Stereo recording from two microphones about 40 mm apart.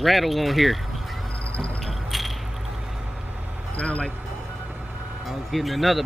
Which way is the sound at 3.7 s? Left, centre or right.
Left.